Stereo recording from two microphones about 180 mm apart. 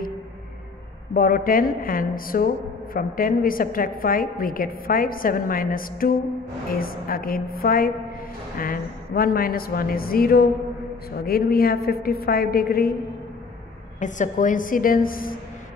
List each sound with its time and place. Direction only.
1.1 s a woman's voice: 50° left (ahead or behind)
13.9 s a woman's voice: 45° left (ahead or behind)